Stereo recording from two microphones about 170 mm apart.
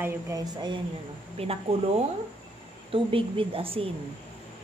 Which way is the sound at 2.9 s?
30° right (ahead or behind).